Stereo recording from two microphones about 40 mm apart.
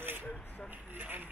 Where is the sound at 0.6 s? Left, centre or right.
Right.